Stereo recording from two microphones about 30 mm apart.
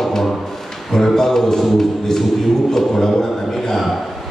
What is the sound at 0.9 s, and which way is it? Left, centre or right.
Speech, centre.